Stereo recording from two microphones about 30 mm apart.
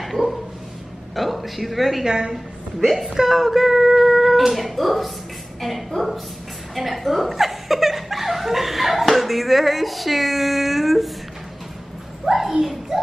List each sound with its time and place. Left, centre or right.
0.0 s dog: centre
1.1 s a woman's voice: centre
2.0 s a woman's voice: right
2.3 s a woman's voice: centre
7.3 s laughter: centre
12.3 s a sound: centre